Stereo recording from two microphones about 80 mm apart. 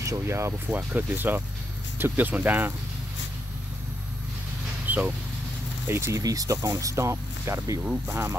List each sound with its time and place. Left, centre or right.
0.0 s speech: right
0.7 s speech: right
4.8 s vehicle: right
5.9 s speech: right
6.2 s speech: right
7.8 s speech: right